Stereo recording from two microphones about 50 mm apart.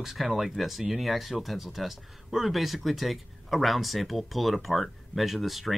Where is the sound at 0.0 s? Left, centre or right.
Centre.